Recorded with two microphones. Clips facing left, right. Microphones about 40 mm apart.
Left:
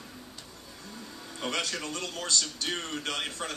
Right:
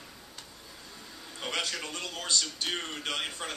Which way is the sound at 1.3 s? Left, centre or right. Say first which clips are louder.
Left 1 dB; right.